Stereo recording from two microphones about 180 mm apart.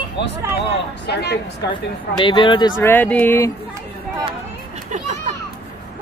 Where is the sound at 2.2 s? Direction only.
25° left (ahead or behind).